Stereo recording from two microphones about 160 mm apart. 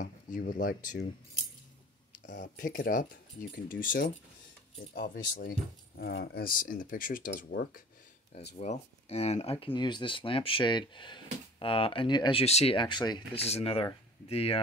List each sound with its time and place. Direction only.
0.0 s speech: 60° left (ahead or behind)
2.3 s speech: 55° left (ahead or behind)
5.9 s speech: 80° left; by 7.8 s 65° left (ahead or behind)
8.5 s speech: 40° left (ahead or behind)
13.4 s speech: 40° left (ahead or behind)